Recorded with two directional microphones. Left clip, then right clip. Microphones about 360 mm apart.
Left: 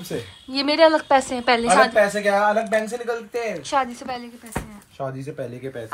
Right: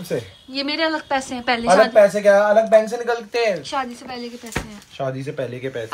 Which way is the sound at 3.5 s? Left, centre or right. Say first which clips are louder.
Left 2 dB; centre.